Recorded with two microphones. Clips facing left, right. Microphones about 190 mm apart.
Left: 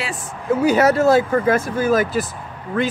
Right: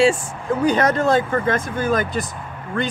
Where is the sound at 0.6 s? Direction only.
5° left (ahead or behind).